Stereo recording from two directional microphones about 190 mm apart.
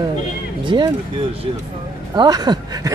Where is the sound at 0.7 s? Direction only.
25° right (ahead or behind).